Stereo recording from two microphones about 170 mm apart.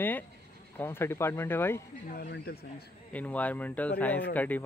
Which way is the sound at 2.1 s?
65° left (ahead or behind).